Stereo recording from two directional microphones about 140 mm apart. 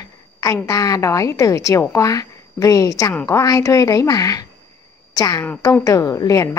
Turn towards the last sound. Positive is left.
turn(degrees=25)  # may be behind; listen again after turning